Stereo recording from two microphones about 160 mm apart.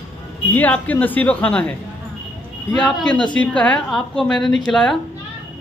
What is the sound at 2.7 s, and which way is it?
A woman's voice, 5° left (ahead or behind).